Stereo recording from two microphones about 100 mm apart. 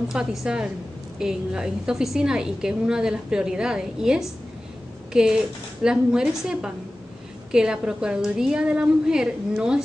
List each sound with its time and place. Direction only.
0.1 s a woman's voice: 5° right (ahead or behind)